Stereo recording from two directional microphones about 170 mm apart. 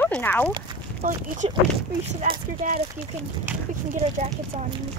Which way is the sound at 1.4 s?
35° right (ahead or behind).